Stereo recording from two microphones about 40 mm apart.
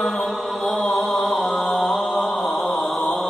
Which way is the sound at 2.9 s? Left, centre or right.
Centre.